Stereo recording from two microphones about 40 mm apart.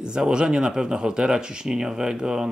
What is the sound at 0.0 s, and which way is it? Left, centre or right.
Speech, centre.